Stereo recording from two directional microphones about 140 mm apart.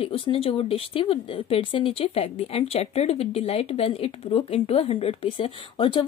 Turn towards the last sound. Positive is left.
turn(degrees=40)  # may be behind; listen again after turning